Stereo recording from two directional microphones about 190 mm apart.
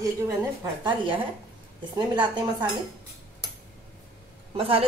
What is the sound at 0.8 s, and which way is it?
Speech, 25° right (ahead or behind).